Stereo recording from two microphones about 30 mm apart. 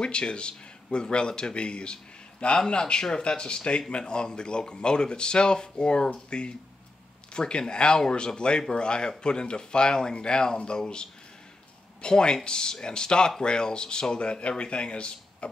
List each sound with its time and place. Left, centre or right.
0.0 s speech: left
12.0 s speech: left